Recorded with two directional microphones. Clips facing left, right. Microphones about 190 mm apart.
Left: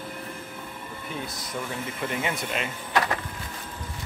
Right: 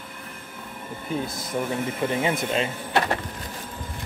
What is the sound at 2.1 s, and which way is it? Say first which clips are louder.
Speech: right 3 dB; 30° right (ahead or behind).